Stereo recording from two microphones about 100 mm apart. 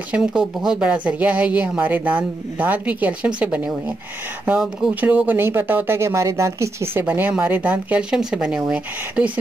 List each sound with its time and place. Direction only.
0.1 s speech: 10° right (ahead or behind)
5.0 s speech: 15° right (ahead or behind)